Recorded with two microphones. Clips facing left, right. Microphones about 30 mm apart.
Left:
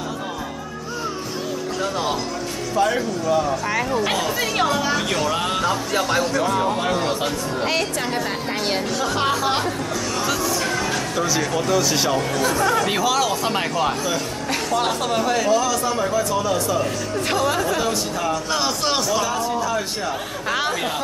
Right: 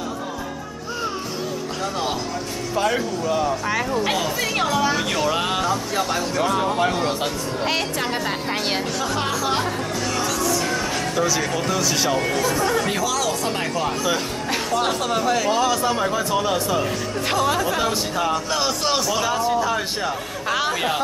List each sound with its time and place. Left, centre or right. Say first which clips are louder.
2.7 s a man's voice: left 2 dB; centre
10.2 s music: left 1 dB; centre
11.1 s speech: even; centre
12.9 s speech: left 3 dB; centre
14.5 s speech: left 1 dB; centre
15.5 s a man's voice: even; right
16.8 s speech: left 1 dB; centre
18.1 s a man's voice: right 1 dB; right
18.5 s speech: even; centre
19.3 s a man's voice: right 2 dB; centre
20.1 s speech: even; centre
20.7 s a man's voice: right 2 dB; centre